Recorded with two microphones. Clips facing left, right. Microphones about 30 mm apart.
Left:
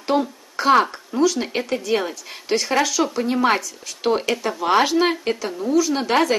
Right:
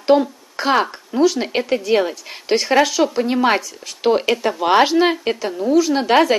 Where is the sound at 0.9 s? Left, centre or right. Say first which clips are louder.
Right 3 dB; right.